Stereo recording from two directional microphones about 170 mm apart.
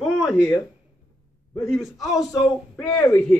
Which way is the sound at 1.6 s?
Centre (ahead or behind).